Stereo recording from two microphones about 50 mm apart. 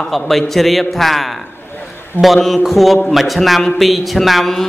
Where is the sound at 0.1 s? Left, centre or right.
Centre.